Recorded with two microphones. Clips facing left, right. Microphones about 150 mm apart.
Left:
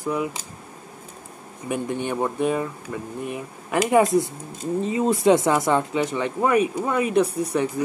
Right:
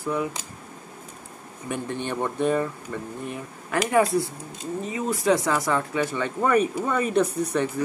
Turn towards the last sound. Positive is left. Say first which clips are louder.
# left 2 dB
turn(degrees=10)  # may be behind; listen again after turning